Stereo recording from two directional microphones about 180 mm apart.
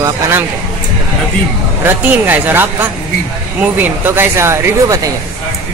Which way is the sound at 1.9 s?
10° right (ahead or behind).